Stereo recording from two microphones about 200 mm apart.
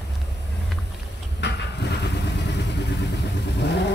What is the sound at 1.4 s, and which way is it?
Vehicle, 55° left (ahead or behind).